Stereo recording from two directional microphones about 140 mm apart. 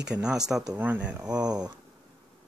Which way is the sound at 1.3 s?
30° right (ahead or behind).